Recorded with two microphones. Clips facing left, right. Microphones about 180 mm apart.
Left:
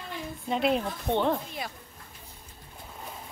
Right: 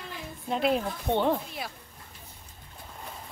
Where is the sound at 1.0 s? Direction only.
15° right (ahead or behind).